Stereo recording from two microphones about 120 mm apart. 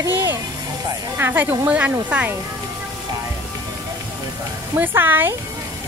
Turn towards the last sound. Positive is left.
turn(degrees=-15)  # may be behind; listen again after turning